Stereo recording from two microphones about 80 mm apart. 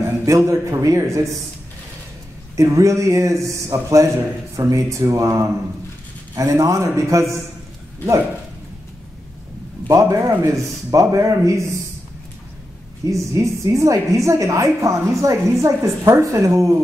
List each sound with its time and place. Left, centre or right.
0.4 s a woman's voice: right
2.5 s a woman's voice: right
9.8 s a man's voice: right
13.0 s a woman's voice: right